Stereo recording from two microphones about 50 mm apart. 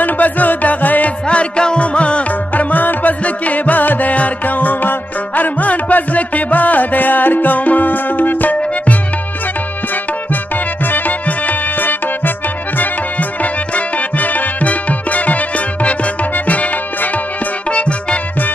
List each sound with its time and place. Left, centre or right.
0.0 s music: left
1.2 s music: left
2.7 s music: left
10.9 s music: left